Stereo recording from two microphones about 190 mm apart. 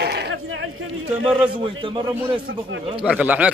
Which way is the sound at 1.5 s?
25° right (ahead or behind).